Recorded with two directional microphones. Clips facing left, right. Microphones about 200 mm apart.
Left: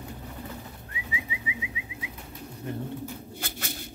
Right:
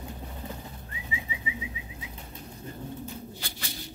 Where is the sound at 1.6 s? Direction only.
65° left (ahead or behind).